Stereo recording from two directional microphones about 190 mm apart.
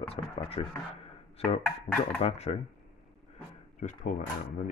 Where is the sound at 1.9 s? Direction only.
45° left (ahead or behind).